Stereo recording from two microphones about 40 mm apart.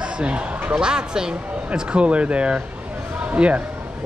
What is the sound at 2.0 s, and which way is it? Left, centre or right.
Speech, right.